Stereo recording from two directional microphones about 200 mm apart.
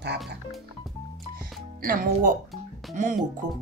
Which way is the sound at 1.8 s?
45° right (ahead or behind).